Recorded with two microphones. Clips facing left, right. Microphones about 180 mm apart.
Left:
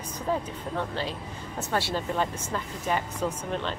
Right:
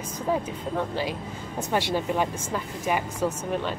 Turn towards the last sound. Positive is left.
turn(degrees=-10)  # may be behind; listen again after turning